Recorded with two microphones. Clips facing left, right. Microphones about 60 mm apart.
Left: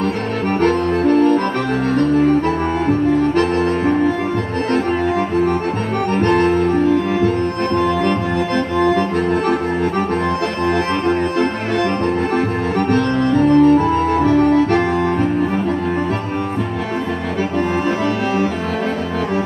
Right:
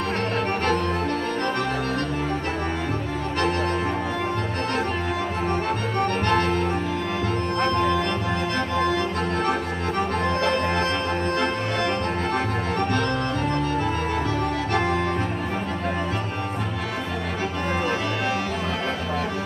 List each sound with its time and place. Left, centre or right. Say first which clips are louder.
0.6 s accordion: left 8 dB; left
6.2 s music: left 9 dB; left
12.7 s music: left 8 dB; left